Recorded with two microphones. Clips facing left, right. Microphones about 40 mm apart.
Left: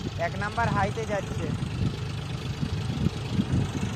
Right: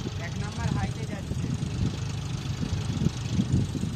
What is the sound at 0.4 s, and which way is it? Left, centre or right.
Speech, left.